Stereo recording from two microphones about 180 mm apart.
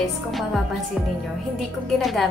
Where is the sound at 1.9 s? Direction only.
Centre (ahead or behind).